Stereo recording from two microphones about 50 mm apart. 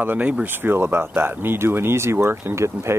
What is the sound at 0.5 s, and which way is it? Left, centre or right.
Speech, right.